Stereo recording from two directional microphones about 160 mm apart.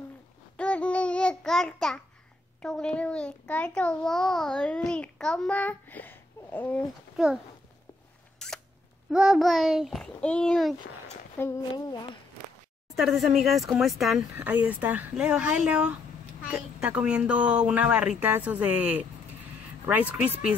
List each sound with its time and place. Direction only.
0.6 s child singing: 10° left (ahead or behind)
2.6 s a child's voice: 5° left (ahead or behind)
8.4 s single-lens reflex camera: 5° left (ahead or behind)
9.1 s a child's voice: 5° right (ahead or behind)
11.3 s speech: 15° left (ahead or behind)
11.7 s speech: 25° left (ahead or behind)
12.9 s a child's voice: centre (ahead or behind)
14.3 s a woman's voice: 10° right (ahead or behind)